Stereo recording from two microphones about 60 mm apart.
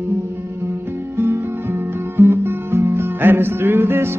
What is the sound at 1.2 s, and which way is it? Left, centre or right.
Music, right.